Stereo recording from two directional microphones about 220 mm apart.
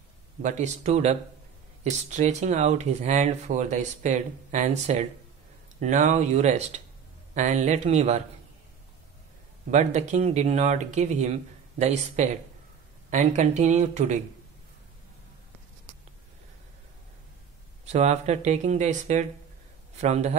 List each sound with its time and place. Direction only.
0.4 s speech: 35° right (ahead or behind)
9.7 s speech: 30° right (ahead or behind)
17.8 s speech: 30° right (ahead or behind)